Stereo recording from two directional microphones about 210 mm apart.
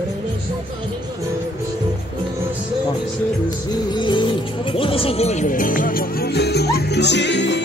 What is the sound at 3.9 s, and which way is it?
Music, 20° left (ahead or behind).